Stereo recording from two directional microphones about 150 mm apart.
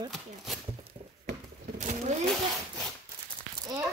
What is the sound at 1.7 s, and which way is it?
Speech, 55° right (ahead or behind).